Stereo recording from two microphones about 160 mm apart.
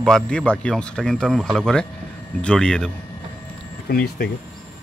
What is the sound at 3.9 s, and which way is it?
Speech, 70° left (ahead or behind).